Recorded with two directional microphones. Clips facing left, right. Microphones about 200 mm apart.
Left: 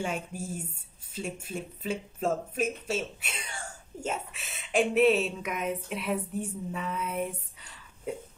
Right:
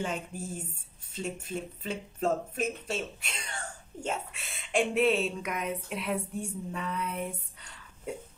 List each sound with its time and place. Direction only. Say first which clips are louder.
0.0 s speech: left 1 dB; 10° left (ahead or behind)